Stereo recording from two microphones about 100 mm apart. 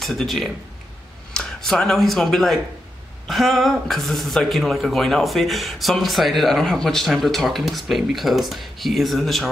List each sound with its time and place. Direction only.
0.0 s speech: centre (ahead or behind)